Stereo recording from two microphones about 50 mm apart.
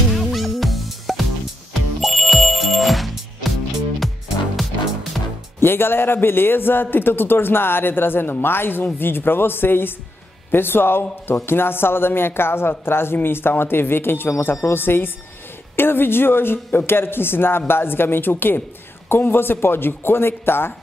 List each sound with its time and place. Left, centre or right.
0.1 s music: centre
5.2 s music: centre
5.6 s a man's voice: left